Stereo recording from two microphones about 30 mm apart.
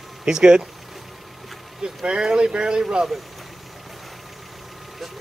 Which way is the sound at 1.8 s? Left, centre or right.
Right.